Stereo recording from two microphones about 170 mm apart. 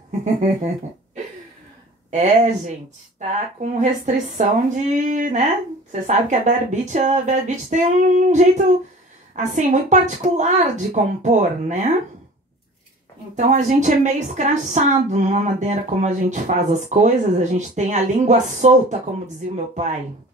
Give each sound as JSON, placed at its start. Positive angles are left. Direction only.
{"t": 0.2, "sound": "a woman's voice", "side_deg": -45}
{"t": 2.0, "sound": "a woman's voice", "side_deg": -45}
{"t": 13.4, "sound": "a woman's voice", "side_deg": -45}